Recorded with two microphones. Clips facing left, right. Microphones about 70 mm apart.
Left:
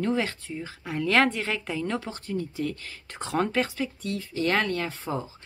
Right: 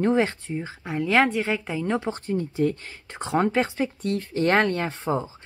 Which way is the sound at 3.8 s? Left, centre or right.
Right.